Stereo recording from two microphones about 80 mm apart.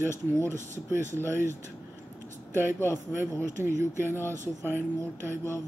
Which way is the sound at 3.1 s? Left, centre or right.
Right.